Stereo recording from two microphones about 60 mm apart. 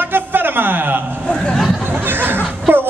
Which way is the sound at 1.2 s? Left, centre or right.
Centre.